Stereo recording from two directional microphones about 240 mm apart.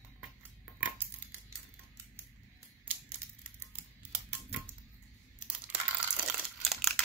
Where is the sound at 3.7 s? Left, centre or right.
Centre.